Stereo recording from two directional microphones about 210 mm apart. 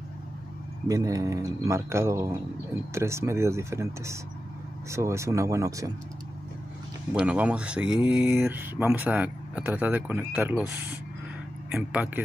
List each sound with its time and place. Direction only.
0.8 s speech: 15° right (ahead or behind)
7.2 s speech: 5° right (ahead or behind)
11.7 s speech: 5° right (ahead or behind)